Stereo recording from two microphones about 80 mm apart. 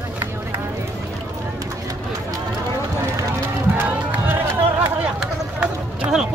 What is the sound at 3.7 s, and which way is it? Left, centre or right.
Run, right.